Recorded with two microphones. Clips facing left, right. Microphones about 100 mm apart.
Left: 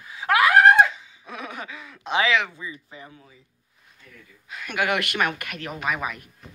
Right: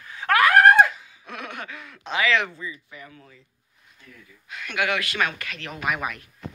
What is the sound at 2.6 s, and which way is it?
Speech, 25° left (ahead or behind).